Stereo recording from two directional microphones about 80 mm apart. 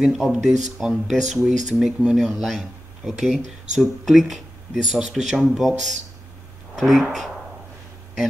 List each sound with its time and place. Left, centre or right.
0.0 s speech: centre